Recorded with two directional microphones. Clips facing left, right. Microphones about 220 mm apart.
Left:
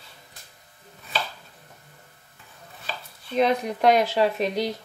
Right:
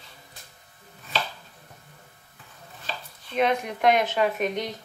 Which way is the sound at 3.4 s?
35° left (ahead or behind).